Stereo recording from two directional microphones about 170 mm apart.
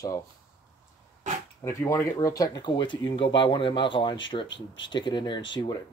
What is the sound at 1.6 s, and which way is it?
Speech, 20° left (ahead or behind).